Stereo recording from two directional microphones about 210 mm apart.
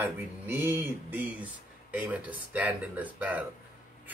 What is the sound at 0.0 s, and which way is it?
Speech, 10° right (ahead or behind).